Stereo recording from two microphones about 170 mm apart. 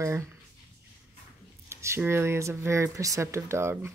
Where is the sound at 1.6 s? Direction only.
15° right (ahead or behind).